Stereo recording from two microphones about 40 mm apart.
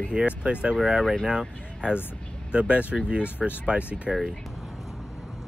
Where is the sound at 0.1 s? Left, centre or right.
Right.